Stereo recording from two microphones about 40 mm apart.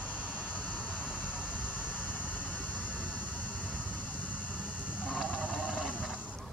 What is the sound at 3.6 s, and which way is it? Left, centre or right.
Vehicle, left.